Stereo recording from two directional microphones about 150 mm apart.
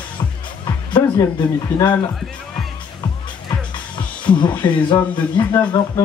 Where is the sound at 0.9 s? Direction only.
30° left (ahead or behind).